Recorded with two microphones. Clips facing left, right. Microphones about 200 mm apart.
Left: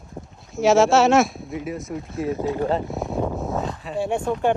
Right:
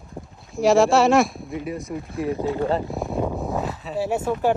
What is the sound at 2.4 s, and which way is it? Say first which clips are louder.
Speech: even; 20° left (ahead or behind).